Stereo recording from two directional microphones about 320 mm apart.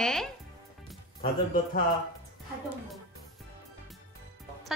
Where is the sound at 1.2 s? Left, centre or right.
Left.